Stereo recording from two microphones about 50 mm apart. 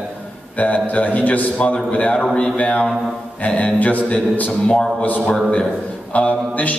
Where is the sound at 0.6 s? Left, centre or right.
Left.